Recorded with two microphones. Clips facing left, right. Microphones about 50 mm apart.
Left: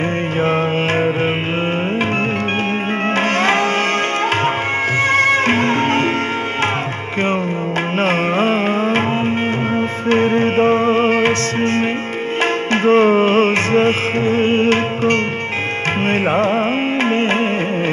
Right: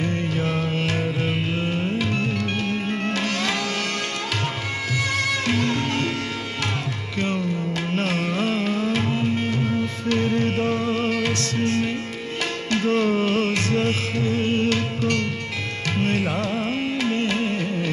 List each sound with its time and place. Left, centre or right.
0.4 s music: left
3.2 s music: left
5.1 s music: left
8.0 s music: left